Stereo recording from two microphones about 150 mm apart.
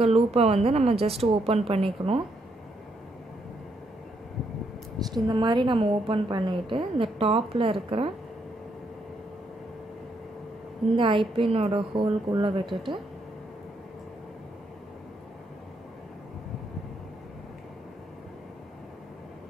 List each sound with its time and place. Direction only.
0.0 s a woman's voice: 45° right (ahead or behind)
5.0 s a woman's voice: 30° right (ahead or behind)
11.0 s a woman's voice: 35° right (ahead or behind)